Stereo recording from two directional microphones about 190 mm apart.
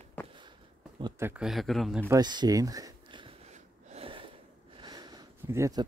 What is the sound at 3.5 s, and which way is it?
Gasp, 35° right (ahead or behind).